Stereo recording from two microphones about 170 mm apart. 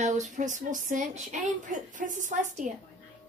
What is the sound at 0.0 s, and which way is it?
A woman's voice, 45° right (ahead or behind).